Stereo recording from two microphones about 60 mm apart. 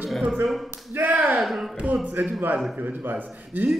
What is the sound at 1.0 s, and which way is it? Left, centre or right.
Speech, right.